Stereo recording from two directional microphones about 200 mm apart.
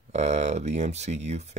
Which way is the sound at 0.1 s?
35° right (ahead or behind).